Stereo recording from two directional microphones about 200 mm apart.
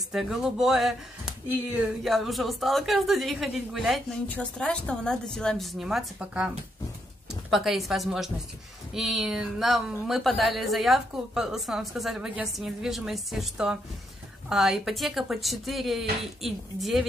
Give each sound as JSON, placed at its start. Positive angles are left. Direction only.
{"t": 0.1, "sound": "a woman's voice", "side_deg": -5}